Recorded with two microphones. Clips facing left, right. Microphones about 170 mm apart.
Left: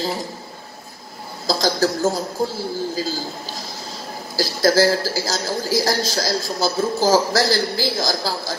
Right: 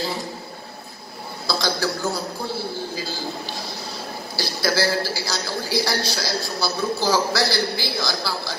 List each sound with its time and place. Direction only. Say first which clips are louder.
1.5 s a man's voice: left 5 dB; 45° left (ahead or behind)